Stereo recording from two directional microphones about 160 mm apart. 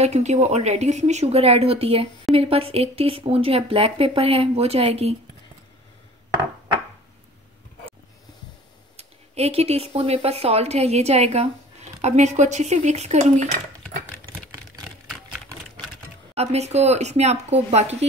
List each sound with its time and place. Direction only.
0.0 s speech: 45° right (ahead or behind)
8.9 s speech: 40° right (ahead or behind)
16.3 s speech: 45° right (ahead or behind)